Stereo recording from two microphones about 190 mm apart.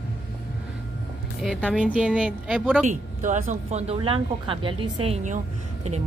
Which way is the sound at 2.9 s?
40° right (ahead or behind).